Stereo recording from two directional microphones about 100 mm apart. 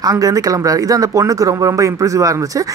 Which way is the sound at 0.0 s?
35° right (ahead or behind).